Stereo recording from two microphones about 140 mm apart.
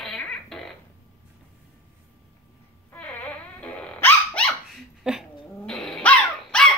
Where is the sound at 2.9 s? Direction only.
10° left (ahead or behind).